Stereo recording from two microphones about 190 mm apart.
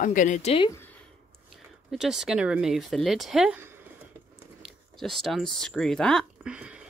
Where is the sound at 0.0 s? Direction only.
40° left (ahead or behind).